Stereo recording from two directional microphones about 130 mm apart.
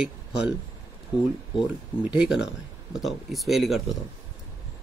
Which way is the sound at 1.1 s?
35° left (ahead or behind).